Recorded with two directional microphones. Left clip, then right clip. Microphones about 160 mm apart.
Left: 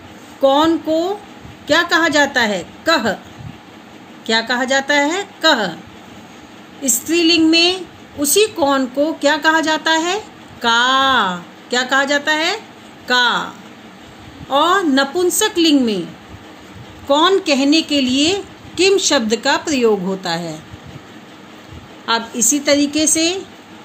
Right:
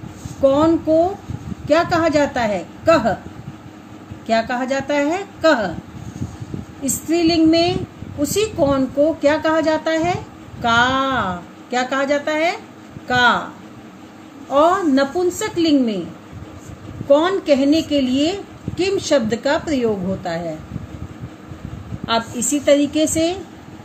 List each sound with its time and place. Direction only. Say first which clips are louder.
0.4 s a woman's voice: left 2 dB; 60° left (ahead or behind)
4.3 s a woman's voice: left 3 dB; 65° left (ahead or behind)
6.8 s a woman's voice: left 2 dB; 65° left (ahead or behind)
14.5 s a woman's voice: left 1 dB; 70° left (ahead or behind)
17.1 s a woman's voice: left 1 dB; 70° left (ahead or behind)
22.0 s a woman's voice: left 3 dB; 65° left (ahead or behind)